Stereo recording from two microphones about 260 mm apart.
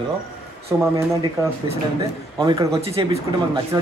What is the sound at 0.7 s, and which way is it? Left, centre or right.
Speech, centre.